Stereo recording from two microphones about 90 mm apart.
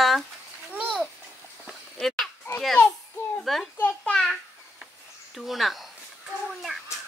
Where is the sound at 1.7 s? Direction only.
Centre (ahead or behind).